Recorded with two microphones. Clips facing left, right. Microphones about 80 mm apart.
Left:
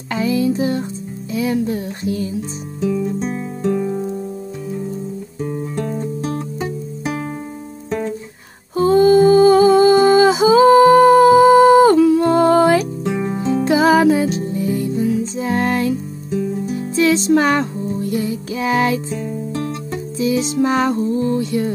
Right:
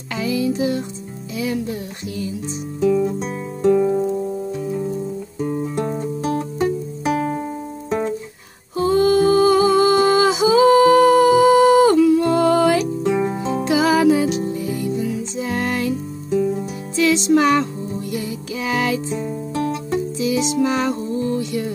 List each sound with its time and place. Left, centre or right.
0.1 s music: left
3.6 s music: centre
8.7 s humming: left
13.1 s music: centre
13.4 s music: right
13.7 s music: left
16.9 s music: left
20.2 s music: left